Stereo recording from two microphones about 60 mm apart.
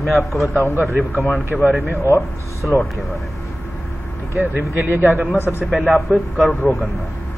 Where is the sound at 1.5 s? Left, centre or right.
Centre.